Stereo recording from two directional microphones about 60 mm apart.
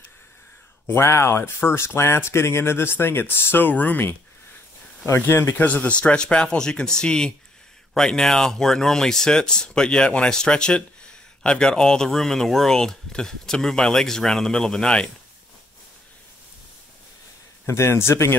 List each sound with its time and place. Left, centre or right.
0.8 s speech: left
5.0 s a man's voice: left
5.6 s speech: left
17.6 s a man's voice: left